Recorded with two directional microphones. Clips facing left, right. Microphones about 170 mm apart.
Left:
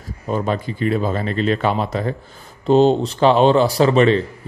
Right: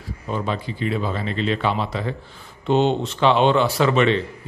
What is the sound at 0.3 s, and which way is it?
A man's voice, 45° left (ahead or behind).